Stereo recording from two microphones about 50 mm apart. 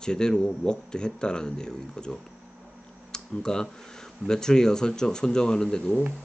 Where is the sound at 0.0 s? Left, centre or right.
Centre.